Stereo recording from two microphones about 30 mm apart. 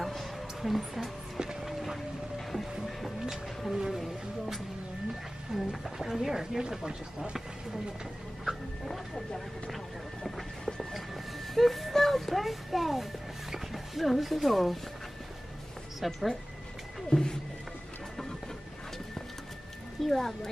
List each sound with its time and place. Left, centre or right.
0.0 s music: centre
0.6 s speech: centre
1.6 s vehicle: centre
2.3 s music: centre
3.7 s a sound: centre
5.5 s wild animals: centre
6.0 s speech: centre
8.8 s speech: centre
11.5 s a sound: centre
11.9 s music: centre
16.0 s speech: centre
17.1 s speech: centre
20.1 s speech: centre